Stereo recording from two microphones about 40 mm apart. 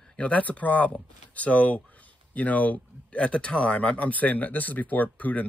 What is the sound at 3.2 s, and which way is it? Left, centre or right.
Speech, left.